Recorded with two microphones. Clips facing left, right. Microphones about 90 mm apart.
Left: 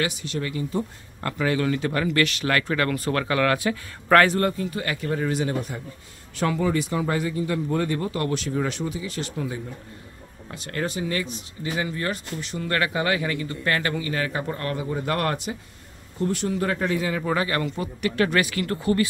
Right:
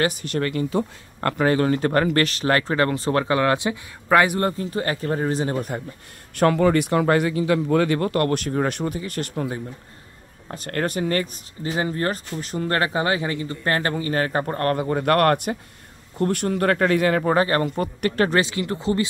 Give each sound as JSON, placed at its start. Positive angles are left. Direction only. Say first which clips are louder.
{"t": 0.0, "sound": "speech", "louder": "right 5 dB", "side_deg": -50}
{"t": 1.4, "sound": "speech", "louder": "right 4 dB", "side_deg": -40}
{"t": 4.1, "sound": "a man's voice", "louder": "even", "side_deg": -15}
{"t": 4.4, "sound": "speech", "louder": "right 1 dB", "side_deg": -30}
{"t": 6.3, "sound": "speech", "louder": "right 6 dB", "side_deg": -55}
{"t": 11.6, "sound": "speech", "louder": "right 4 dB", "side_deg": -35}
{"t": 17.3, "sound": "speech", "louder": "right 5 dB", "side_deg": -40}
{"t": 18.4, "sound": "speech", "louder": "right 1 dB", "side_deg": -20}